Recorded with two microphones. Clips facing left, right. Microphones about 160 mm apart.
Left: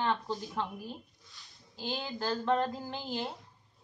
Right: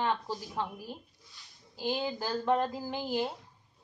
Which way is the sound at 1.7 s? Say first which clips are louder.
Right 5 dB; 10° right (ahead or behind).